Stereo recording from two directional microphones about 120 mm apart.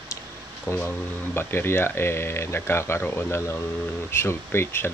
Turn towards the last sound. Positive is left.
turn(degrees=20)  # may be behind; listen again after turning